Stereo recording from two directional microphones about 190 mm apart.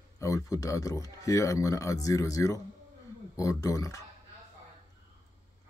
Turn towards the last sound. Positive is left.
turn(degrees=15)  # may be behind; listen again after turning